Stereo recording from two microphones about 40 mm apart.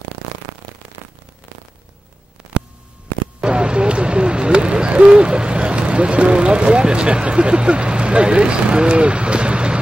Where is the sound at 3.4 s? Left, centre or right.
Right.